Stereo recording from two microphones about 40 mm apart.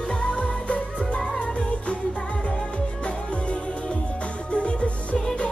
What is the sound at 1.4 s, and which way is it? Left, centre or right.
Music of asia, left.